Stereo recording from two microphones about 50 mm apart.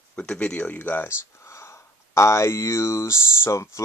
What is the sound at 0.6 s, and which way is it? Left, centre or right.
Speech, left.